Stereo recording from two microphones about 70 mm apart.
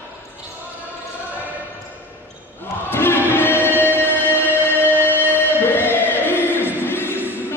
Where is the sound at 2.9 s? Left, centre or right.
Left.